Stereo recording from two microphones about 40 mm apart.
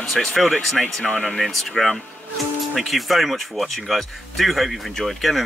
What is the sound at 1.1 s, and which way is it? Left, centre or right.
Speech, left.